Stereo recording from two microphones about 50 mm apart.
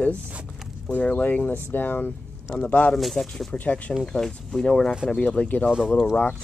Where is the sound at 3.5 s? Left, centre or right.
Left.